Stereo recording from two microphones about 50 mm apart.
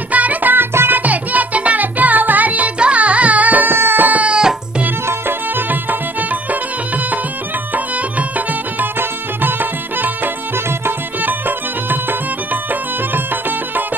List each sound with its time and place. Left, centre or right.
0.1 s music: right
1.0 s music: right
3.7 s baby cry: right
4.4 s music: centre
9.4 s music: right